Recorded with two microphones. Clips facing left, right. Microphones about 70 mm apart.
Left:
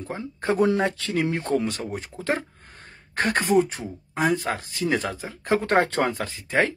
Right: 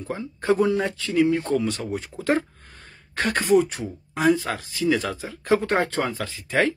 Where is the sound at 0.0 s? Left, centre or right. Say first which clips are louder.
Even; left.